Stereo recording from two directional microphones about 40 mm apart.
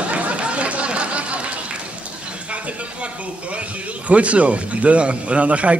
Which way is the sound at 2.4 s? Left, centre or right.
Right.